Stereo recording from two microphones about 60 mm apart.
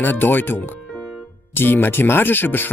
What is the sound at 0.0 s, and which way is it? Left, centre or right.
Speech, left.